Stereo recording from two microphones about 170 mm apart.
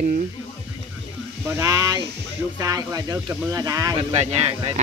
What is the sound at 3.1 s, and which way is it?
Speech, 10° right (ahead or behind).